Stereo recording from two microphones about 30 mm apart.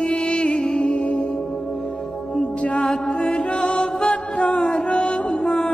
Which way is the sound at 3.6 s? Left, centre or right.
Left.